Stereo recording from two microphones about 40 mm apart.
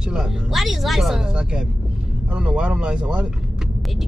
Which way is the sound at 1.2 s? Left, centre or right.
Right.